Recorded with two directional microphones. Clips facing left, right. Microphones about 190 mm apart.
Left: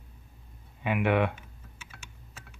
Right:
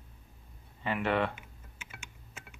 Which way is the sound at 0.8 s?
15° left (ahead or behind).